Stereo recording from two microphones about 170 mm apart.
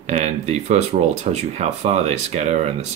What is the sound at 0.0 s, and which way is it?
Speech, 45° right (ahead or behind).